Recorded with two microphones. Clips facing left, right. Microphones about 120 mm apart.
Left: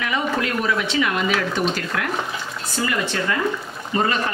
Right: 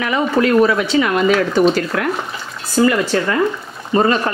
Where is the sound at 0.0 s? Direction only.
40° right (ahead or behind).